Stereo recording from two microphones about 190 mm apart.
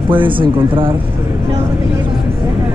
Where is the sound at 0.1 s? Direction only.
25° right (ahead or behind).